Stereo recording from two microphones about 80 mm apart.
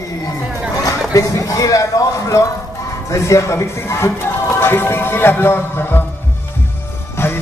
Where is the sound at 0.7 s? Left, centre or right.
Left.